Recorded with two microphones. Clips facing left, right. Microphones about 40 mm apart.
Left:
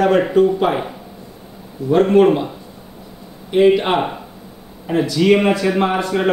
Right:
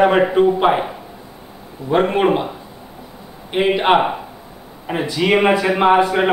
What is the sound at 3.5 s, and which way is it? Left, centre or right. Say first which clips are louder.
A man's voice: left 1 dB; right.